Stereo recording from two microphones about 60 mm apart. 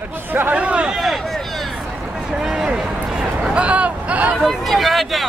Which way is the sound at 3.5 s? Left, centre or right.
Right.